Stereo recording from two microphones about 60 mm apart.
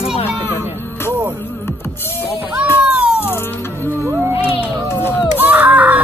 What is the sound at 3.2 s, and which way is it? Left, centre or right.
Music, left.